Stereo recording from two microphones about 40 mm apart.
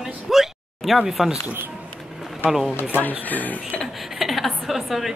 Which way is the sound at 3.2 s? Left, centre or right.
Left.